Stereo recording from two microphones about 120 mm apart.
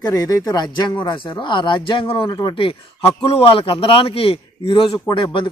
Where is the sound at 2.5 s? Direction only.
50° left (ahead or behind).